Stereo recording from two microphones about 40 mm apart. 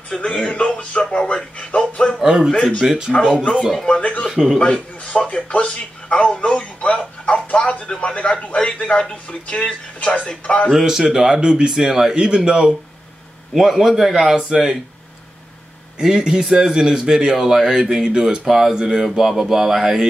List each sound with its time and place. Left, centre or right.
0.1 s speech: centre
0.5 s speech: left
2.2 s speech: centre
2.5 s speech: left
4.3 s a man's voice: centre
4.6 s speech: left
6.4 s music: left
7.4 s speech: left
10.7 s speech: centre
11.7 s speech: centre
13.6 s speech: centre
16.0 s speech: centre
18.8 s speech: centre
19.0 s speech: centre